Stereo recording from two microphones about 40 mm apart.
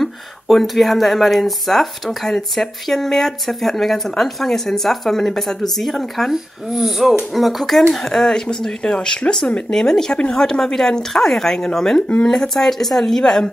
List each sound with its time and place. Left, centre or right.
0.0 s speech: centre
6.3 s speech: centre
10.1 s speech: left
10.4 s speech: centre